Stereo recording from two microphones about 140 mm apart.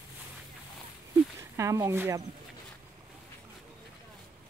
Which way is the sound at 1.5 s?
20° right (ahead or behind).